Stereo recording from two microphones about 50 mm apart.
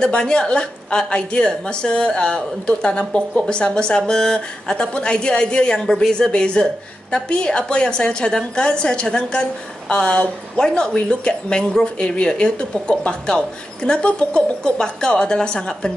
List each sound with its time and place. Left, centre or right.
0.0 s a woman's voice: centre